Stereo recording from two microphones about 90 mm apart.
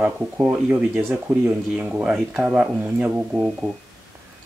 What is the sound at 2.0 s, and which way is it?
Speech, 15° right (ahead or behind).